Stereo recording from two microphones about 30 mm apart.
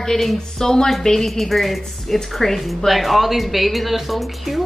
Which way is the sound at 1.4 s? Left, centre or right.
Centre.